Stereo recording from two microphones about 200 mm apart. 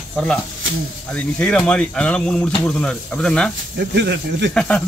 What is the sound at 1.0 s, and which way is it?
Speech, 5° left (ahead or behind).